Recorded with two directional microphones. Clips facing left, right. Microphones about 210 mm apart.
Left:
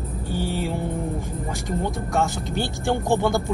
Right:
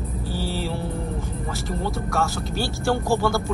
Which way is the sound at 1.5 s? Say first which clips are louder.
Left 1 dB; 15° left (ahead or behind).